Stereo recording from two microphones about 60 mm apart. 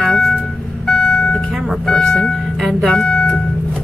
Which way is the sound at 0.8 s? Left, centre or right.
Left.